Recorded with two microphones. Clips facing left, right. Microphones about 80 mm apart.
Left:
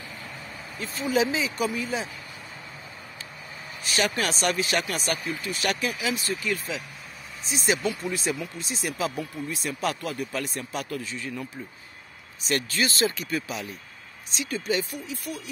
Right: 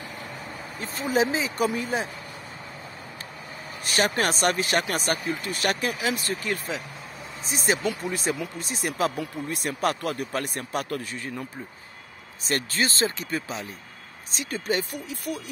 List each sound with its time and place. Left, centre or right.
0.7 s speech: right
3.8 s speech: right
7.9 s speech: right
12.4 s speech: right
14.3 s speech: right